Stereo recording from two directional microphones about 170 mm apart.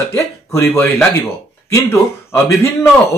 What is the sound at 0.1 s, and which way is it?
Speech, 15° left (ahead or behind).